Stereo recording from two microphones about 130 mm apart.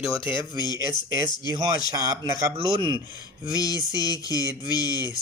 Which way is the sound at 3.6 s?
30° left (ahead or behind).